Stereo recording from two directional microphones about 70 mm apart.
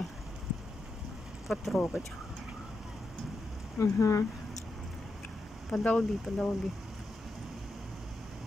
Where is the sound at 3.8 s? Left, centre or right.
Left.